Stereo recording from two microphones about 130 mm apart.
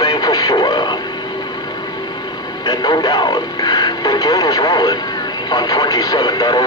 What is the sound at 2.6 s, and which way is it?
Radio, 30° left (ahead or behind).